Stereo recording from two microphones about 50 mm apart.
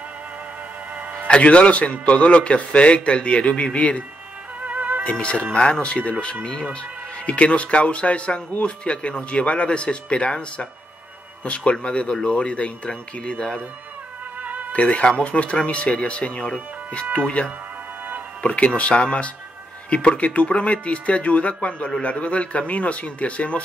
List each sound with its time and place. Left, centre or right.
1.2 s a man's voice: left
4.6 s music: right
5.2 s a man's voice: left
7.2 s a man's voice: left
14.4 s music: right
14.7 s a man's voice: left
18.4 s a man's voice: left